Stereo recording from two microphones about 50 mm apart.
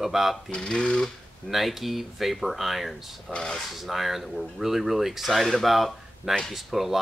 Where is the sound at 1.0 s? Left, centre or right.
Centre.